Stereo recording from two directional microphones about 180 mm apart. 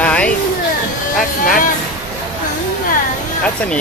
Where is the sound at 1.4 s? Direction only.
50° left (ahead or behind).